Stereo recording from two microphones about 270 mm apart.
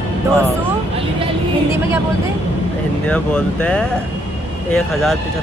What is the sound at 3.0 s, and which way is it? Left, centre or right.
Speech, centre.